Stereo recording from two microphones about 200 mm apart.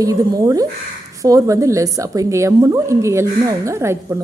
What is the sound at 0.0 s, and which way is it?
A woman's voice, 15° right (ahead or behind).